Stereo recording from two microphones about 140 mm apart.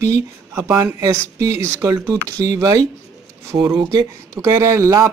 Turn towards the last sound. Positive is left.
turn(degrees=-20)  # may be behind; listen again after turning